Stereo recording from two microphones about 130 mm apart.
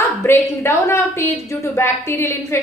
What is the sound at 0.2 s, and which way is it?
A woman's voice, 20° left (ahead or behind).